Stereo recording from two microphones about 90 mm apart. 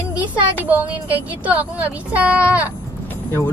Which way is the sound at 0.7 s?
15° right (ahead or behind).